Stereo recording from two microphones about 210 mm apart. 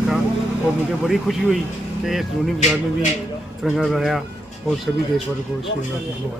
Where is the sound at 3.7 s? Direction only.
Centre (ahead or behind).